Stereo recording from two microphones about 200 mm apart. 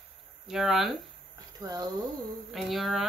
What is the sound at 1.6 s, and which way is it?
Speech, 20° right (ahead or behind).